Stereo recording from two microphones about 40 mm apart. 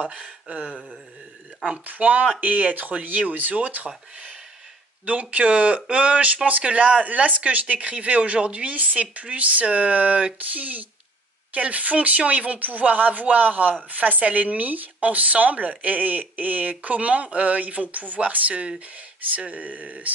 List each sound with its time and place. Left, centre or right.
0.1 s speech: right
1.9 s speech: right